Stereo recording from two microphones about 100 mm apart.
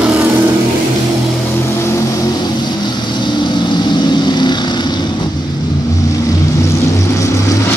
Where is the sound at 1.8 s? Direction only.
25° left (ahead or behind).